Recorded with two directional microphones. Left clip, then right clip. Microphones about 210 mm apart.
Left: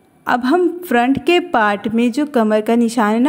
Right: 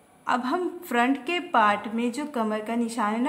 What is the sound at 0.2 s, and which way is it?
A woman's voice, 35° left (ahead or behind).